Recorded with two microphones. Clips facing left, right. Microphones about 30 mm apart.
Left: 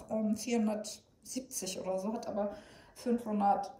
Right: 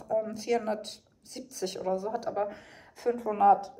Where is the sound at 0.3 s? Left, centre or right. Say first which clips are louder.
Right 3 dB; right.